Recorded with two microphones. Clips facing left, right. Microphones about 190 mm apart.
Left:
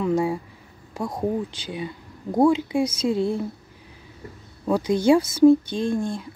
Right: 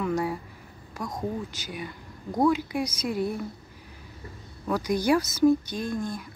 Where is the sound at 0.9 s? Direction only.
30° left (ahead or behind).